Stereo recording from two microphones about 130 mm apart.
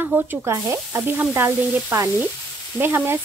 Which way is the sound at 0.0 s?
15° right (ahead or behind).